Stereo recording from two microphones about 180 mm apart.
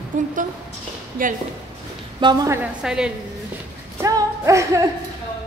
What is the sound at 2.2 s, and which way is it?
Speech, 20° right (ahead or behind).